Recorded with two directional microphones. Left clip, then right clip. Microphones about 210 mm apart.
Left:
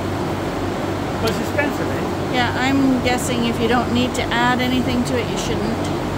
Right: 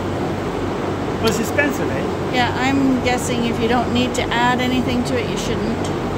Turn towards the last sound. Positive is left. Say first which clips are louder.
# right 1 dB
turn(degrees=0)  # may be behind; listen again after turning